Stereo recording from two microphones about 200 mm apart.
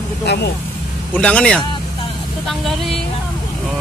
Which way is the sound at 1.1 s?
5° left (ahead or behind).